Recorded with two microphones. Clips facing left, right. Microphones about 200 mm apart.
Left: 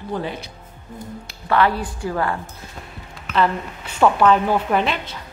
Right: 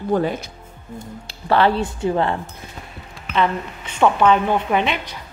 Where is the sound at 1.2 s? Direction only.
30° right (ahead or behind).